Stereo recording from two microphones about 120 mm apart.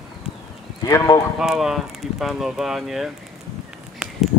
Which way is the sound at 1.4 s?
5° right (ahead or behind).